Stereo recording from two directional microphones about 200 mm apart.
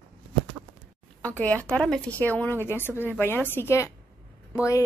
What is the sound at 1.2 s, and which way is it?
A woman's voice, 5° left (ahead or behind).